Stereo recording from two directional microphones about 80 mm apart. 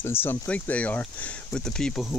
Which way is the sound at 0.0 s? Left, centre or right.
Left.